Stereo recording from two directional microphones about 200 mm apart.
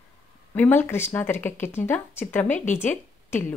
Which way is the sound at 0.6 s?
10° left (ahead or behind).